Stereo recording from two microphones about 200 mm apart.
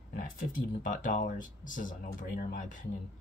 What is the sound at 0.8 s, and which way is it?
Speech, 40° left (ahead or behind).